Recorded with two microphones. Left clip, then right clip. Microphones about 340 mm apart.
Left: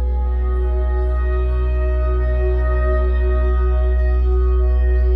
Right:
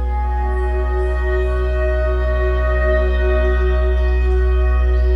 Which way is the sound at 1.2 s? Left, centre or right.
Right.